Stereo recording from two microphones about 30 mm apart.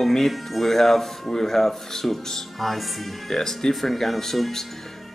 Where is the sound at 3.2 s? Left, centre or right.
Centre.